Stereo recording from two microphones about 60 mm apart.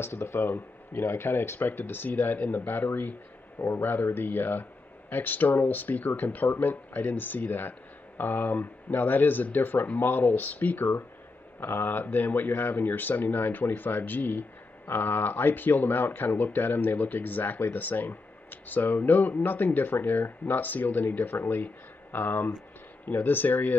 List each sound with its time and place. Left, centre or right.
0.0 s speech: left
1.6 s speech: left